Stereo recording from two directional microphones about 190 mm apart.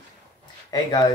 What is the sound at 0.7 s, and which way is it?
Speech, 20° left (ahead or behind).